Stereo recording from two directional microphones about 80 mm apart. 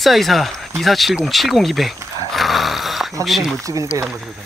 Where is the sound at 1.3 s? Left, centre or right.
Centre.